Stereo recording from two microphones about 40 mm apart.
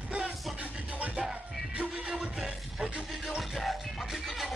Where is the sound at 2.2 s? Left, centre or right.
Centre.